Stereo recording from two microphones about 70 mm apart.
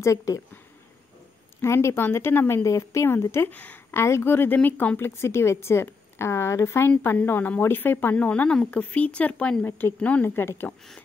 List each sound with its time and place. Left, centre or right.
0.0 s speech: left
1.6 s speech: left
2.6 s speech: left
4.6 s speech: left
7.2 s speech: left
8.3 s speech: centre
9.7 s speech: left
9.9 s speech: centre
10.2 s speech: left